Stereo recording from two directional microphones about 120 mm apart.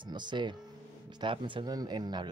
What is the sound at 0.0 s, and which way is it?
Speech, 40° right (ahead or behind).